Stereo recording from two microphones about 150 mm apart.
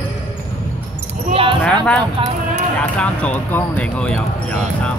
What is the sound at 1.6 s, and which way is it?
Speech, 5° left (ahead or behind).